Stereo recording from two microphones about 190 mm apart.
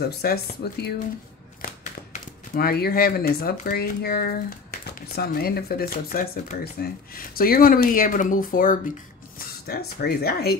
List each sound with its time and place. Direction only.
0.2 s speech: 55° left (ahead or behind)
2.5 s speech: 55° left (ahead or behind)